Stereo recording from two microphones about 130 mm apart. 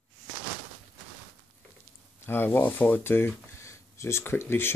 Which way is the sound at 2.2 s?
15° left (ahead or behind).